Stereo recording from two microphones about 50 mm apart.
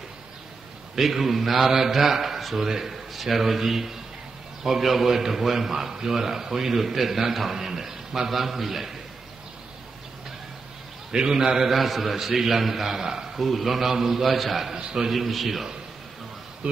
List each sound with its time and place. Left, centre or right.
0.9 s a man's voice: centre
11.1 s a man's voice: centre
11.7 s a man's voice: centre
14.8 s a man's voice: centre
15.0 s a man's voice: centre